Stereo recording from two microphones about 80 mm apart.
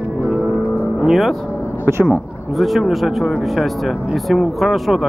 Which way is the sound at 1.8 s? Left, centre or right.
Right.